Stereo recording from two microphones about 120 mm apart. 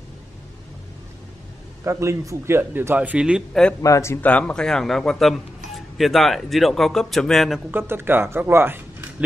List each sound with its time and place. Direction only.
1.9 s speech: 25° right (ahead or behind)
3.8 s speech: 25° left (ahead or behind); by 7.6 s centre (ahead or behind)
7.7 s speech: 20° right (ahead or behind)